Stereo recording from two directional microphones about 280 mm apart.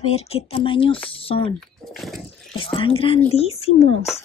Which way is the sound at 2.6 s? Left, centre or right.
Centre.